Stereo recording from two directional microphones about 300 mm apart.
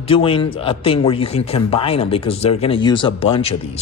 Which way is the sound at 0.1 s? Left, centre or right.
Centre.